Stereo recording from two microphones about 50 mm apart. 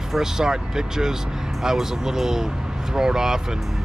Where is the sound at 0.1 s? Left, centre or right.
Centre.